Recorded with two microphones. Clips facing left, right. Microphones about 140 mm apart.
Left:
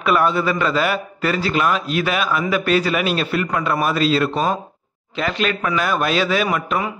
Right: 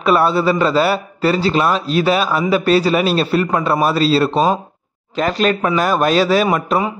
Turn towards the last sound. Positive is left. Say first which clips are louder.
# right 5 dB
turn(degrees=-35)  # may be behind; listen again after turning